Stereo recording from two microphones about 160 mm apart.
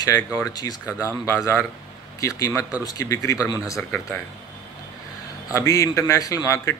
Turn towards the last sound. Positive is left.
turn(degrees=20)  # may be behind; listen again after turning